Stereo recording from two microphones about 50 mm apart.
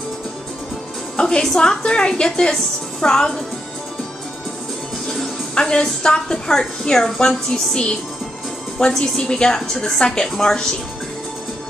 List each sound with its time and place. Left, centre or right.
1.1 s music: centre
1.4 s a woman's voice: centre
5.5 s a woman's voice: centre